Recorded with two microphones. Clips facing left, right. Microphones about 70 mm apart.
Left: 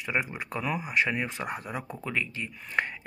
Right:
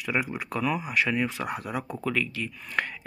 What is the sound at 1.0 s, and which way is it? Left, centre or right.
Speech, left.